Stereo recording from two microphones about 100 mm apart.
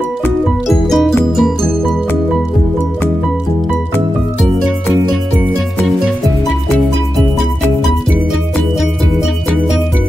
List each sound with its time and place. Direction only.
0.7 s music: centre (ahead or behind)